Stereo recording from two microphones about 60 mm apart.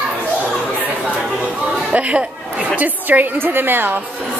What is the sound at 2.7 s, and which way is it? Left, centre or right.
A woman's voice, right.